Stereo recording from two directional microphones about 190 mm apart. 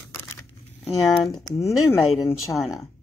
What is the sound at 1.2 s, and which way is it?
Speech, 20° left (ahead or behind).